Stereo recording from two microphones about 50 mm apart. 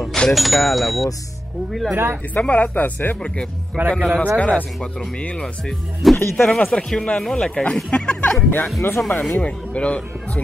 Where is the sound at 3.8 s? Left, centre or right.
Right.